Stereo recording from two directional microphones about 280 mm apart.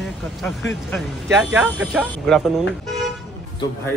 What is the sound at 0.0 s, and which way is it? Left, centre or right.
Speech, centre.